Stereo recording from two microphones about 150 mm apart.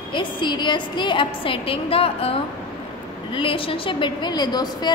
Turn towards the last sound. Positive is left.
turn(degrees=30)  # may be behind; listen again after turning